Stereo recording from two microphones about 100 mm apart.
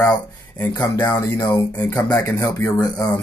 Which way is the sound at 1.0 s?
40° left (ahead or behind).